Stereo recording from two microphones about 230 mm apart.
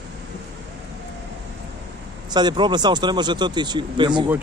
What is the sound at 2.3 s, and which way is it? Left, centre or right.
Speech, centre.